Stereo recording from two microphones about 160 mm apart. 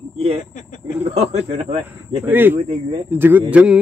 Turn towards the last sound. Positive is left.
turn(degrees=-10)  # may be behind; listen again after turning